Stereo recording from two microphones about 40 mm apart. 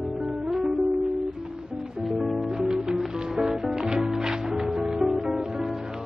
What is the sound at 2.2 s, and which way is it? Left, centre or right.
Music, right.